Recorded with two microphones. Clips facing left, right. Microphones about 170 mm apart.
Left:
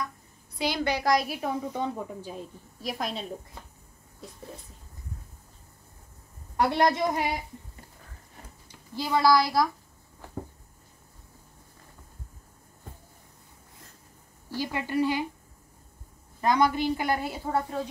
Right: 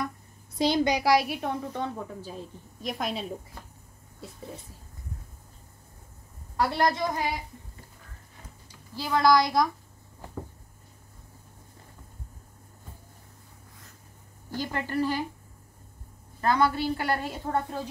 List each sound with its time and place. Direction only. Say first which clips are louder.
0.7 s a woman's voice: right 3 dB; 20° right (ahead or behind)
1.1 s a woman's voice: right 2 dB; centre (ahead or behind)
2.8 s speech: right 1 dB; centre (ahead or behind)
6.5 s a woman's voice: left 2 dB; 20° left (ahead or behind)
8.9 s speech: even; 10° left (ahead or behind)
14.6 s a woman's voice: left 1 dB; 10° left (ahead or behind)
16.3 s a woman's voice: left 1 dB; 15° left (ahead or behind)